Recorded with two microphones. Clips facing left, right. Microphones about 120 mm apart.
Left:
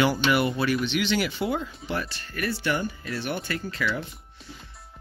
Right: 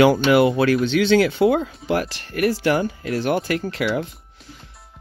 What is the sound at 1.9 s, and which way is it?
Speech, 70° right (ahead or behind).